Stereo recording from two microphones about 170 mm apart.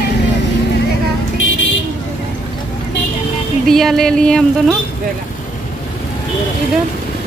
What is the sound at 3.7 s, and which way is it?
Music, centre (ahead or behind).